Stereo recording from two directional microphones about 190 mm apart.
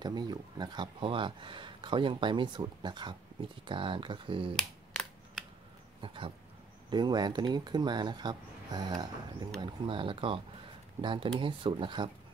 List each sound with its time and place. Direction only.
0.0 s speech: 20° right (ahead or behind)
4.6 s a sound: centre (ahead or behind)
6.0 s speech: 25° right (ahead or behind)